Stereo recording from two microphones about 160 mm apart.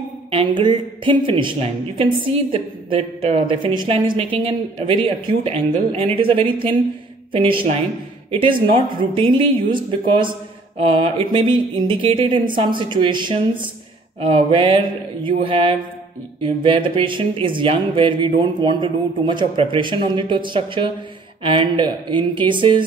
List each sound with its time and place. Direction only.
0.3 s a woman's voice: 35° right (ahead or behind)